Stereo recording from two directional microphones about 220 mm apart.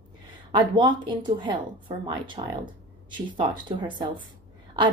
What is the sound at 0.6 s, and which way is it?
Speech, 20° right (ahead or behind).